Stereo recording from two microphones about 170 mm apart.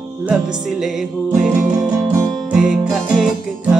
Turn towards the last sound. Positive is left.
turn(degrees=-5)  # may be behind; listen again after turning